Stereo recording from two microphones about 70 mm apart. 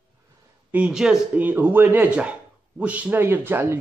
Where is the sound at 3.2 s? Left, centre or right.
Right.